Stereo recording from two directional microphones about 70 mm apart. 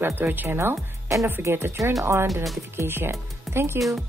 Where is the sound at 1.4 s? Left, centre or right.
Right.